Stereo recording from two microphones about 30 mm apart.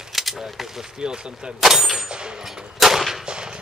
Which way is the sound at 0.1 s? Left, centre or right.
Centre.